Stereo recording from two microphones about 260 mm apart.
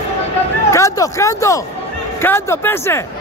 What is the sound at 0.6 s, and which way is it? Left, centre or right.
Speech, centre.